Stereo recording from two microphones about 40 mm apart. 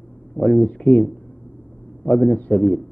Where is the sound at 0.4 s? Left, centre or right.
Centre.